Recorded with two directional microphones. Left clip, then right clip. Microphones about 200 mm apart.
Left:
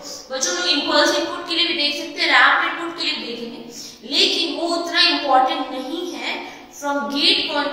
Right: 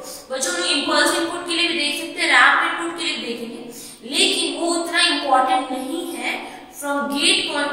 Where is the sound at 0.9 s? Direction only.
15° left (ahead or behind).